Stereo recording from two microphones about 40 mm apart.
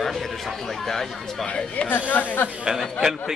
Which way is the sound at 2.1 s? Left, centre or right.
Left.